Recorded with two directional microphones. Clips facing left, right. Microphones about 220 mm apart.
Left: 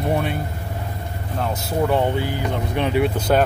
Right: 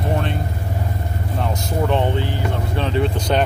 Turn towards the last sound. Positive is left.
turn(degrees=5)  # may be behind; listen again after turning